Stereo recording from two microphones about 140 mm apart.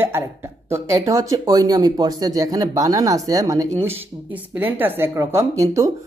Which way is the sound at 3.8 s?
15° right (ahead or behind).